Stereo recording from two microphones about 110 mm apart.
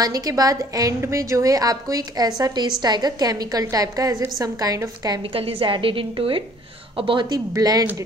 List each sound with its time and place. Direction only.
0.0 s a woman's voice: 35° right (ahead or behind)
5.2 s a woman's voice: 55° right (ahead or behind)
7.2 s a woman's voice: 35° right (ahead or behind)